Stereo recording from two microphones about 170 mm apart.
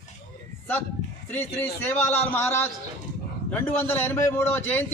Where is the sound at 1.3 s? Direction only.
10° left (ahead or behind).